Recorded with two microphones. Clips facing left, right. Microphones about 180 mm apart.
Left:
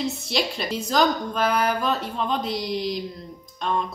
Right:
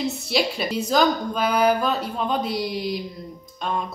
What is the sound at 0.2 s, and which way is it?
Speech, 5° right (ahead or behind).